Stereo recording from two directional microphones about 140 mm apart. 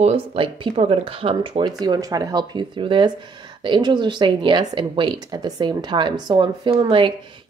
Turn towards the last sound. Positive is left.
turn(degrees=-40)  # may be behind; listen again after turning